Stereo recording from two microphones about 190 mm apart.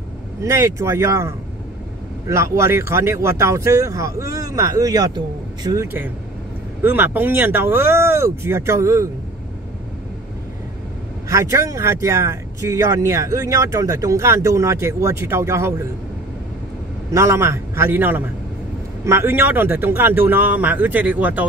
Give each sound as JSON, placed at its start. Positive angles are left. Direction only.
{"t": 0.4, "sound": "speech", "side_deg": -15}
{"t": 11.2, "sound": "speech", "side_deg": -15}
{"t": 17.1, "sound": "speech", "side_deg": -15}